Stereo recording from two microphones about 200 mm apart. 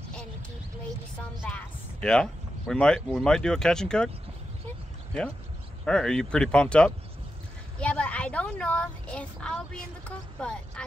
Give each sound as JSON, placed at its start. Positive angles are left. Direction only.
{"t": 1.5, "sound": "a sound", "side_deg": 5}
{"t": 2.7, "sound": "a woman's voice", "side_deg": 5}
{"t": 5.9, "sound": "a woman's voice", "side_deg": 5}